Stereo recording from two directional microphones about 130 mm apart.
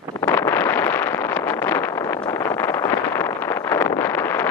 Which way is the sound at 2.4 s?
25° left (ahead or behind).